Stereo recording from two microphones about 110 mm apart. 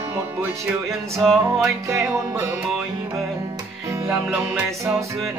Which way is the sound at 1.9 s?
25° right (ahead or behind).